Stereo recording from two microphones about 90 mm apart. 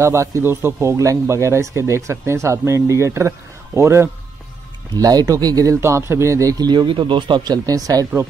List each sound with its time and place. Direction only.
0.0 s speech: 35° right (ahead or behind)
4.9 s speech: 45° right (ahead or behind)
6.6 s speech: 55° right (ahead or behind)